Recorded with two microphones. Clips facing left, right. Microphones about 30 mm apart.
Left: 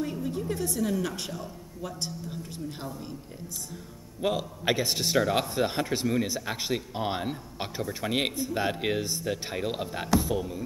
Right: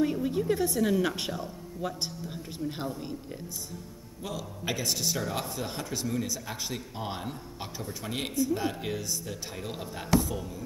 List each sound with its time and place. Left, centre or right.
0.0 s a woman's voice: centre
2.6 s a woman's voice: centre
4.2 s a man's voice: left